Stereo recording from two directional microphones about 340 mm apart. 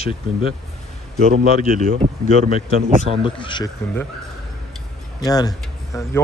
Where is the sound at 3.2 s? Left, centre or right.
Centre.